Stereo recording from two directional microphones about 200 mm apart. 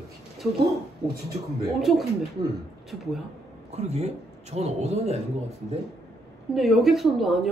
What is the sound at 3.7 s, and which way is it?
Speech, 30° right (ahead or behind).